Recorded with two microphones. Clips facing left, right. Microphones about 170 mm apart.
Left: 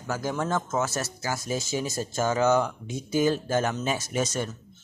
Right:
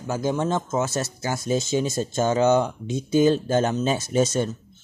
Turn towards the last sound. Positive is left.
turn(degrees=-30)  # may be behind; listen again after turning